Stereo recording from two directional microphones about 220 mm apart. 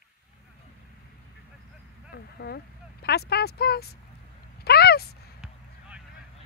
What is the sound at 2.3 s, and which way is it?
Speech, 45° left (ahead or behind).